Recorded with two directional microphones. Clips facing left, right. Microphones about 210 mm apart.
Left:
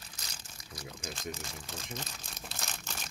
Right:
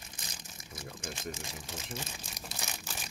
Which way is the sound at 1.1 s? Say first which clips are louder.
Even; 15° right (ahead or behind).